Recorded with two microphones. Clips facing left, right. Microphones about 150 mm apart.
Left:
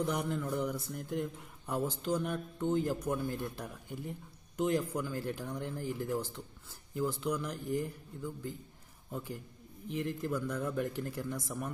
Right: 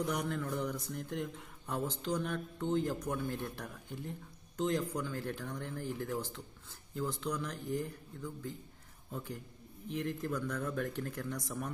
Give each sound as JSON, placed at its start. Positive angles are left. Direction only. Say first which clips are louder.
{"t": 0.0, "sound": "speech", "louder": "left 2 dB", "side_deg": 10}